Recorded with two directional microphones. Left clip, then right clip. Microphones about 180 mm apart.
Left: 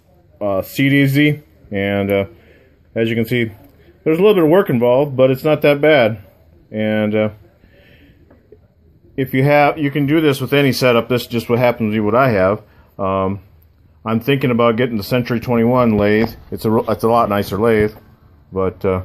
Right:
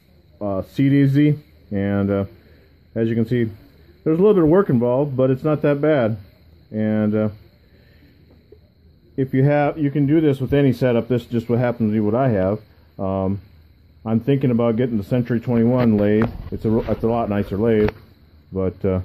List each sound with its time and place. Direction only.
0.4 s speech: 10° right (ahead or behind)
9.1 s speech: 10° right (ahead or behind)